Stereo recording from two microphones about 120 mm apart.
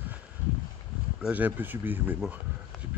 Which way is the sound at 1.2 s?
15° right (ahead or behind).